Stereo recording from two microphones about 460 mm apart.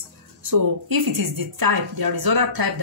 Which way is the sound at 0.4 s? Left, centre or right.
Right.